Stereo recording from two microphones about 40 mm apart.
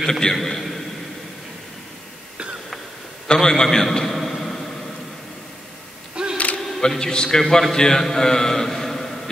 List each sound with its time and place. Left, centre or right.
0.0 s a man's voice: centre
3.3 s a man's voice: centre
4.2 s a sound: centre
6.3 s camera: left
6.8 s a man's voice: centre